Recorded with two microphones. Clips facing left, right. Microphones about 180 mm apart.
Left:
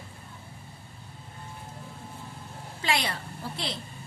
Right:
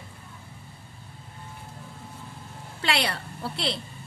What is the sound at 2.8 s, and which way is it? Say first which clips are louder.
Speech: right 2 dB; 70° right (ahead or behind).